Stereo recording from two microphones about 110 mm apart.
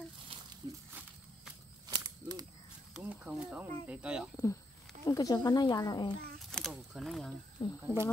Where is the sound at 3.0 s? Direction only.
15° right (ahead or behind).